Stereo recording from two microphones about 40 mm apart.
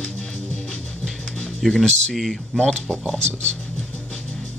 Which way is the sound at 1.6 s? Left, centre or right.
Centre.